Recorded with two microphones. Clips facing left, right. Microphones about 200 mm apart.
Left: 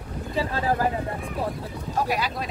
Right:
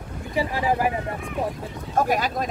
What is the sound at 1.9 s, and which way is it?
Speech, 45° right (ahead or behind).